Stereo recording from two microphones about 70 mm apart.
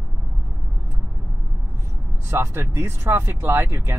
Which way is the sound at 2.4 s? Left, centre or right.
Right.